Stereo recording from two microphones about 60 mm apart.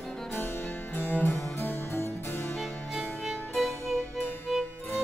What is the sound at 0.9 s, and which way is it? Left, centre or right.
Music, left.